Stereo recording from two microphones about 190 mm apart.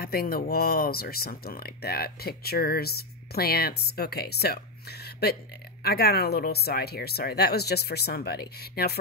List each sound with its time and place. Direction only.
0.0 s speech: 50° left (ahead or behind)
5.9 s speech: 55° left (ahead or behind)